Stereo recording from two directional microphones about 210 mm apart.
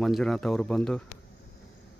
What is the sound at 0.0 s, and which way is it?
Speech, centre (ahead or behind).